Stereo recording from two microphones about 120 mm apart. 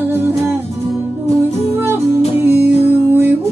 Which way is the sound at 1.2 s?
55° left (ahead or behind).